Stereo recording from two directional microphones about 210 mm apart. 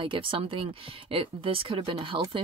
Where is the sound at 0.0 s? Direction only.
25° right (ahead or behind).